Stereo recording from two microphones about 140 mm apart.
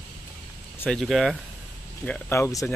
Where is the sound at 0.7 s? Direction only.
5° left (ahead or behind).